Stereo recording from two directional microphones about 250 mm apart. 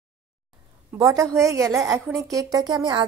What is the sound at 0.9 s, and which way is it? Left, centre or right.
A woman's voice, centre.